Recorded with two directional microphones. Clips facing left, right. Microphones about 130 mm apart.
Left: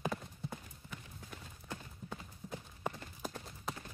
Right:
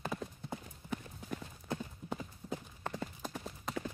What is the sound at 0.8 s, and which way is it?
Clip-clop, 20° right (ahead or behind).